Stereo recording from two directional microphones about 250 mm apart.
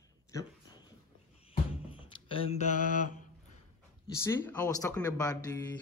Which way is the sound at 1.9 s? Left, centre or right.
Left.